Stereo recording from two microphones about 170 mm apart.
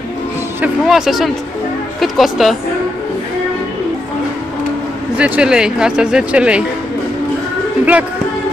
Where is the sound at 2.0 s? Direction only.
Centre (ahead or behind).